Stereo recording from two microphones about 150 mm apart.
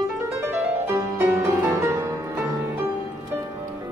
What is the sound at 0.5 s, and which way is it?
Music, 15° right (ahead or behind).